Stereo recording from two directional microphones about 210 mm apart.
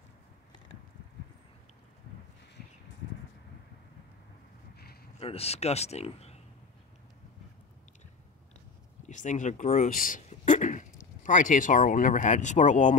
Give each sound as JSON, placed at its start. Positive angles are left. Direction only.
{"t": 5.2, "sound": "speech", "side_deg": 30}
{"t": 9.0, "sound": "speech", "side_deg": 35}